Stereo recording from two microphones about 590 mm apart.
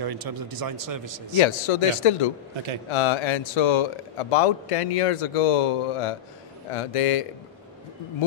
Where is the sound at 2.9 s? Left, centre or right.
Left.